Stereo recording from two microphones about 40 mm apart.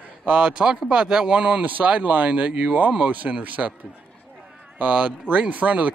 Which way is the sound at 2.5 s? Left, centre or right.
Right.